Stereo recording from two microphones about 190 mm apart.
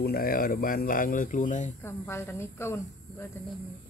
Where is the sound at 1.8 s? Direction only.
15° left (ahead or behind).